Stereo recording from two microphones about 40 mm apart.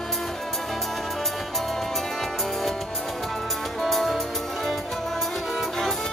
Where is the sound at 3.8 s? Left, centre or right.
Centre.